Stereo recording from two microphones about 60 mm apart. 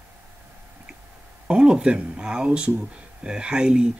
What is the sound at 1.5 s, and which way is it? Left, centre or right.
Speech, centre.